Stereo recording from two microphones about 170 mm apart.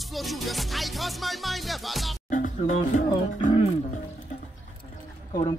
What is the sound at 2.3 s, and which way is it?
Music, 50° left (ahead or behind).